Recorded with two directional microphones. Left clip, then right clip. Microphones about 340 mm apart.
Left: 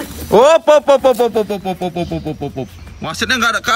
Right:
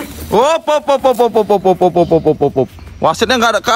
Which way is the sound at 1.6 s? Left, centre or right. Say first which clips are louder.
Right 10 dB; left.